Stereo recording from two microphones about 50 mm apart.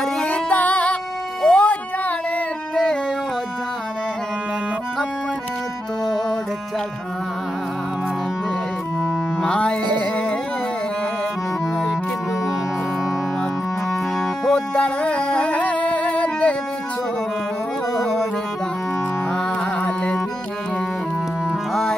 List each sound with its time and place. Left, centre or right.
0.0 s music: left
2.7 s a sound: centre
9.4 s music: left
14.5 s music: left